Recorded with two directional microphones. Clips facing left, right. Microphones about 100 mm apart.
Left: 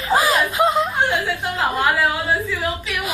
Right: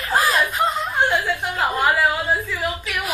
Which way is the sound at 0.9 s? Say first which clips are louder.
Even; 15° left (ahead or behind).